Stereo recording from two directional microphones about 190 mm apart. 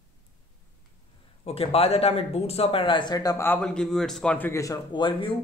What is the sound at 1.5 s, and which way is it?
Speech, 30° left (ahead or behind).